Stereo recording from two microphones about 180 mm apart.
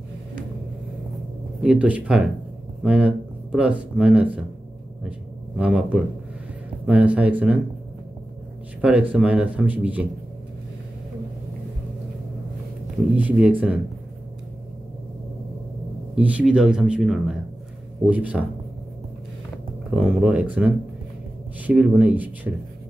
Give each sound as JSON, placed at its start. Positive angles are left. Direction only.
{"t": 1.6, "sound": "speech", "side_deg": -5}
{"t": 5.6, "sound": "speech", "side_deg": -5}
{"t": 9.1, "sound": "speech", "side_deg": -5}
{"t": 13.1, "sound": "speech", "side_deg": -10}
{"t": 16.2, "sound": "speech", "side_deg": -5}
{"t": 20.0, "sound": "speech", "side_deg": -5}